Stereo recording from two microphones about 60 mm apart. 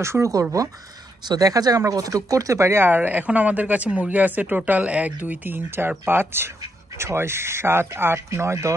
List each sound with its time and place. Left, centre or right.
0.0 s speech: right
0.3 s speech: right
1.4 s speech: right
1.9 s speech: right
2.8 s speech: right